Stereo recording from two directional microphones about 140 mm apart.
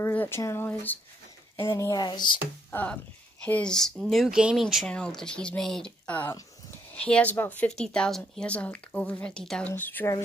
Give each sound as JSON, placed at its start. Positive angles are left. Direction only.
{"t": 0.0, "sound": "speech", "side_deg": 15}
{"t": 2.7, "sound": "speech", "side_deg": 10}